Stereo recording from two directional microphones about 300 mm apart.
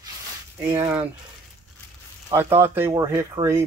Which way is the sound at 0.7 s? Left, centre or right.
Centre.